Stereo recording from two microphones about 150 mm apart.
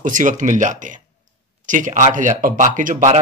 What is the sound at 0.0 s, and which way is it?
Speech, 60° right (ahead or behind).